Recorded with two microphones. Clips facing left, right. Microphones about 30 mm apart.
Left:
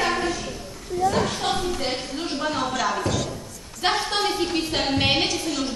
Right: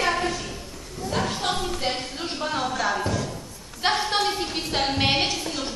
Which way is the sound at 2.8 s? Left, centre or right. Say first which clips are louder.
Even; centre.